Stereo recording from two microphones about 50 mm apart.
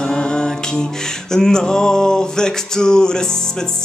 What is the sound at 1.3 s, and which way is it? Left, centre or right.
Music, centre.